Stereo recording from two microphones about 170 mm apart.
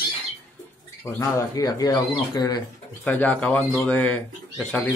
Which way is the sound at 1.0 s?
15° left (ahead or behind).